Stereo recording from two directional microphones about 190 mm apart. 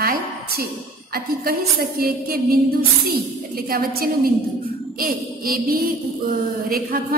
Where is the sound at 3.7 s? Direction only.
55° right (ahead or behind).